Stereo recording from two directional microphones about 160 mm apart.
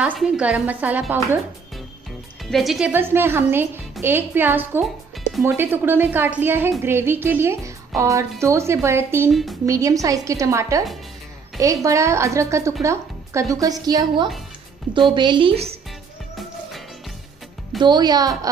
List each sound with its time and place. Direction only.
0.0 s a woman's voice: 5° right (ahead or behind)
2.4 s a woman's voice: centre (ahead or behind); by 9.3 s 15° right (ahead or behind)
9.3 s a woman's voice: centre (ahead or behind)
9.7 s a woman's voice: 20° right (ahead or behind); by 15.7 s 35° right (ahead or behind)
17.8 s a woman's voice: 25° right (ahead or behind)